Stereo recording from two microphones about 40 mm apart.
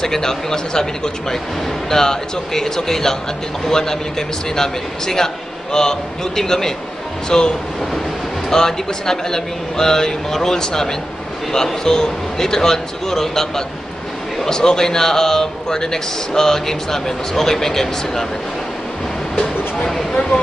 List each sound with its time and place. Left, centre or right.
0.0 s a man's voice: centre